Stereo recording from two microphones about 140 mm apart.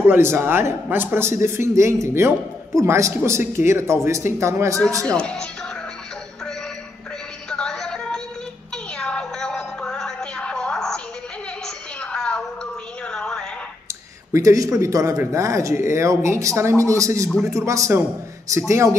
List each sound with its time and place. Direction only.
0.0 s a man's voice: 15° right (ahead or behind)
4.8 s speech: 5° left (ahead or behind)
7.4 s music: 5° left (ahead or behind)
11.6 s a sound: 5° left (ahead or behind)
13.0 s music: 5° left (ahead or behind)
14.3 s speech: 25° right (ahead or behind)